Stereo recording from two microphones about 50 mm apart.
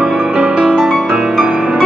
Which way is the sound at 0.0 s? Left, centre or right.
Centre.